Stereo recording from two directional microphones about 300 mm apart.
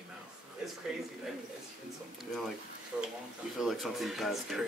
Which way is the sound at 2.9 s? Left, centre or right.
Centre.